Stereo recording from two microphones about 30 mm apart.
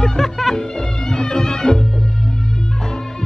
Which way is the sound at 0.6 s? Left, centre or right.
Left.